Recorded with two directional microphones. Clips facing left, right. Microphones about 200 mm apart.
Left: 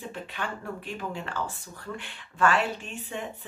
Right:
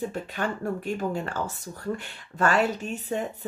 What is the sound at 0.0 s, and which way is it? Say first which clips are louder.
Speech: right 6 dB; 45° right (ahead or behind).